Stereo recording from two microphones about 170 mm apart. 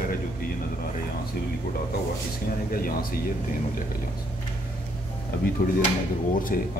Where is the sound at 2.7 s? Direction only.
60° left (ahead or behind).